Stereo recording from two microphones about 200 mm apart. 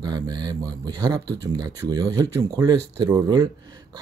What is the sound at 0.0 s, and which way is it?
Speech, 20° right (ahead or behind).